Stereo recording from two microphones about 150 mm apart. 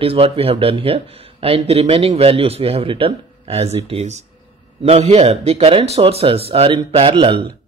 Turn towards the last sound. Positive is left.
turn(degrees=-35)  # may be behind; listen again after turning